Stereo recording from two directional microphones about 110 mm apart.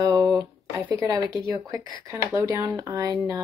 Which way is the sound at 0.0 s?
35° right (ahead or behind).